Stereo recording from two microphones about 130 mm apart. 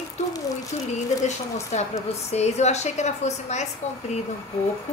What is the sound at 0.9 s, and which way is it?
A woman's voice, 60° left (ahead or behind).